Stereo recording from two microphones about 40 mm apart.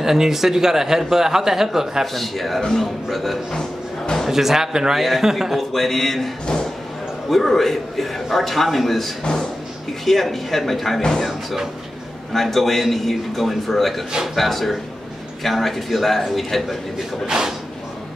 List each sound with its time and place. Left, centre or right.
0.0 s speech: centre
2.1 s a man's voice: centre
3.5 s music: centre
4.3 s speech: centre
5.6 s a man's voice: centre
9.2 s speech: centre
10.0 s a man's voice: centre
11.0 s speech: centre
11.2 s speech: centre
12.3 s a man's voice: centre
17.3 s a sound: centre